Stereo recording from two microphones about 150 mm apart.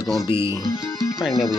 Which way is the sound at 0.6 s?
20° left (ahead or behind).